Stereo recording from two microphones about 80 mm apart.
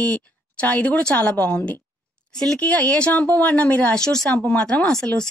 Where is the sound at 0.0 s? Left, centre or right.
Centre.